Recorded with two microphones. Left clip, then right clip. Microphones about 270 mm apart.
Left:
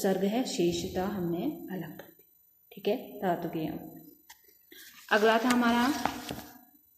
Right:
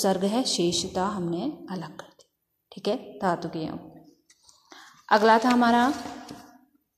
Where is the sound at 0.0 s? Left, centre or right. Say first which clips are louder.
Right 5 dB; right.